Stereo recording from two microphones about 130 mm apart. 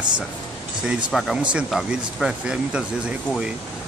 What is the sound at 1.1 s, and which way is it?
Speech, centre (ahead or behind).